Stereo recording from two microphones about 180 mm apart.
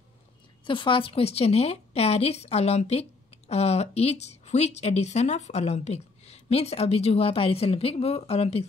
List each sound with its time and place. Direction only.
0.7 s a woman's voice: 25° left (ahead or behind)